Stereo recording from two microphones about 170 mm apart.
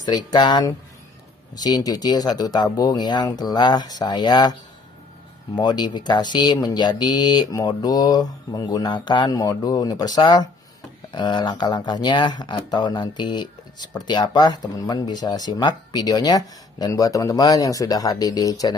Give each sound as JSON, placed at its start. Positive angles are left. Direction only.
{"t": 0.0, "sound": "speech", "side_deg": 25}
{"t": 5.6, "sound": "speech", "side_deg": 25}